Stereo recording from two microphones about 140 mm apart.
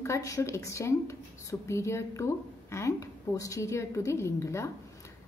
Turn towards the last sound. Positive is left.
turn(degrees=20)  # may be behind; listen again after turning